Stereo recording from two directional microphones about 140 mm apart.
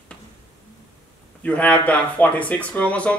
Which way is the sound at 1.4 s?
10° left (ahead or behind).